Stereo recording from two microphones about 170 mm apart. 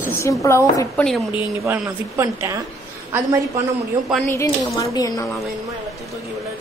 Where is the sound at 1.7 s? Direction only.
15° right (ahead or behind).